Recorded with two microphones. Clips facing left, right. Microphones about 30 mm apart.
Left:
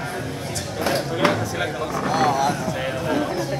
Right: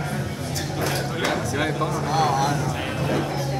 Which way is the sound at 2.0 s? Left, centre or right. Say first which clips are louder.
Left 3 dB; centre.